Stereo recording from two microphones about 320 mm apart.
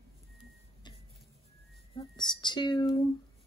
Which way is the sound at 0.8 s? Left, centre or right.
Centre.